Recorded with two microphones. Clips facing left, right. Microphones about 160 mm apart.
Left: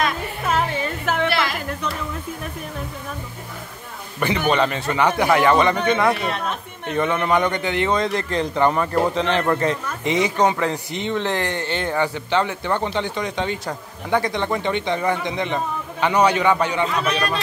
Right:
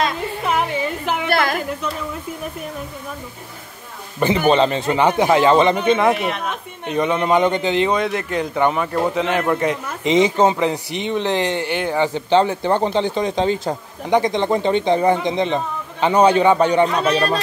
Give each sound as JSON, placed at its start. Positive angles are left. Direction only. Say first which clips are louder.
{"t": 0.5, "sound": "a sound", "louder": "right 1 dB", "side_deg": -15}
{"t": 1.3, "sound": "a sound", "louder": "right 4 dB", "side_deg": -50}
{"t": 4.5, "sound": "speech", "louder": "right 5 dB", "side_deg": -30}
{"t": 7.9, "sound": "a man's voice", "louder": "right 1 dB", "side_deg": -5}
{"t": 10.1, "sound": "a man's voice", "louder": "right 4 dB", "side_deg": -25}
{"t": 12.1, "sound": "speech", "louder": "right 6 dB", "side_deg": -35}
{"t": 14.1, "sound": "speech", "louder": "right 4 dB", "side_deg": -20}
{"t": 14.4, "sound": "speech", "louder": "right 5 dB", "side_deg": -30}